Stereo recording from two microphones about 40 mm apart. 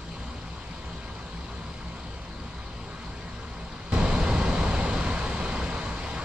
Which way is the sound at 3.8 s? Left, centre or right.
Right.